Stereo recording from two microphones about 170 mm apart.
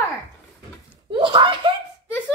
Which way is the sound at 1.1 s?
25° right (ahead or behind).